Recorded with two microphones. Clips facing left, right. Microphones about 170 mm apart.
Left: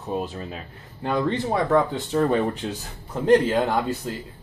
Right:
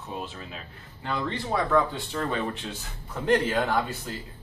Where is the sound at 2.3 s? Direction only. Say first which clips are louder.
Left 7 dB; 40° left (ahead or behind).